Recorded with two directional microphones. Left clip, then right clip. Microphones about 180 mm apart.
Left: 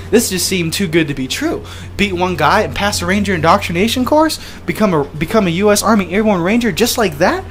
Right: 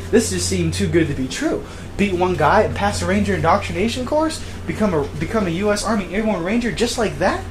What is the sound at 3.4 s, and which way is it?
Speech, 40° left (ahead or behind).